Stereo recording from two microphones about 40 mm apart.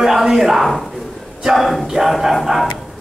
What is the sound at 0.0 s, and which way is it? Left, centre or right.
A man's voice, centre.